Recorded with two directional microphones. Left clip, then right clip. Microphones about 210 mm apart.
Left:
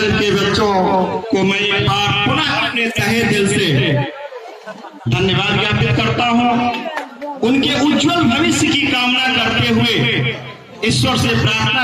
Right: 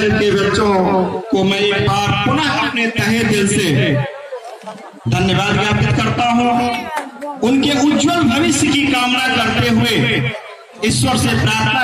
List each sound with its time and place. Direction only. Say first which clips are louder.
0.5 s a man's voice: even; 15° left (ahead or behind)
1.3 s a man's voice: right 1 dB; 40° right (ahead or behind)
5.1 s a man's voice: even; 50° right (ahead or behind)